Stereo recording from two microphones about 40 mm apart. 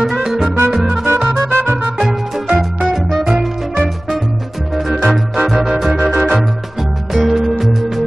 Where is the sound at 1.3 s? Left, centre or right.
Right.